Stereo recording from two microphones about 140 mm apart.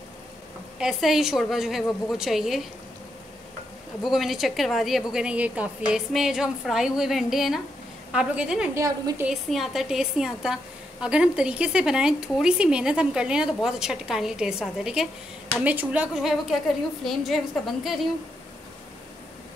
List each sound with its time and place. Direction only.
0.7 s a woman's voice: 5° right (ahead or behind)
4.0 s a woman's voice: centre (ahead or behind)
8.7 s a woman's voice: 25° right (ahead or behind)
9.2 s a woman's voice: centre (ahead or behind)